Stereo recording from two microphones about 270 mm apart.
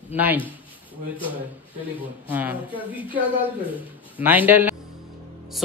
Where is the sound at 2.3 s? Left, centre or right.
Centre.